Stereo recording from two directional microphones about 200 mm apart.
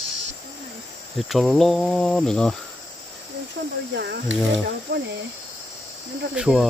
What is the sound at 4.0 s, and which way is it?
Speech, 55° right (ahead or behind).